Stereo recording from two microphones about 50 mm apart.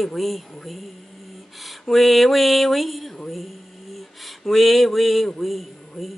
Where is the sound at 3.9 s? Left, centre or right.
Centre.